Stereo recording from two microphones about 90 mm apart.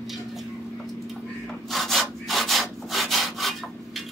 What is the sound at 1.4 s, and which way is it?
Wood, 5° left (ahead or behind).